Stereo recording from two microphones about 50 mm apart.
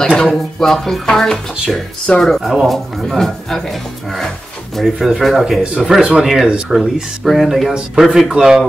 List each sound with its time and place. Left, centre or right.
0.0 s music: centre
2.4 s speech: centre
2.7 s music: centre
4.9 s speech: centre
6.2 s speech: centre
7.7 s speech: centre